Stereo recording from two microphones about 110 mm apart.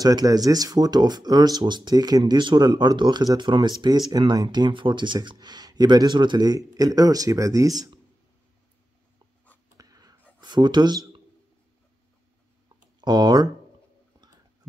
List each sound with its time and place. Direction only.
0.0 s speech: 35° right (ahead or behind)
9.8 s whispering: 35° right (ahead or behind)
10.4 s speech: 45° right (ahead or behind)
13.0 s speech: 40° right (ahead or behind)